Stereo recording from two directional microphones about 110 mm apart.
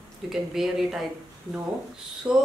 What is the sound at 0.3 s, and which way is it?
Speech, 5° right (ahead or behind).